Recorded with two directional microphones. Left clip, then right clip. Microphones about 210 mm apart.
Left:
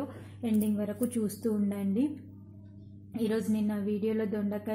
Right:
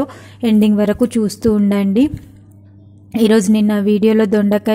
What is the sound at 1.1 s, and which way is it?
Speech, 35° right (ahead or behind).